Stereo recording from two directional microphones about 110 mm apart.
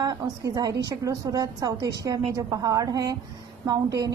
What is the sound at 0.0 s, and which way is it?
A woman's voice, 35° right (ahead or behind).